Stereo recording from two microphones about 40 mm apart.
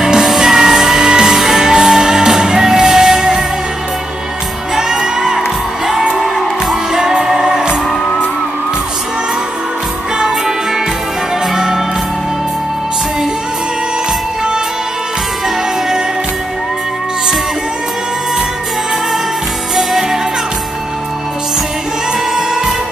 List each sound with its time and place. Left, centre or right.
0.2 s music: centre
4.7 s music: centre
6.1 s music: centre
10.1 s music: centre
11.5 s music: centre
19.7 s music: centre
22.3 s music: centre